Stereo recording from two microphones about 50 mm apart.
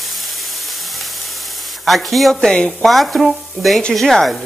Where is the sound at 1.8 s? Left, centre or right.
Centre.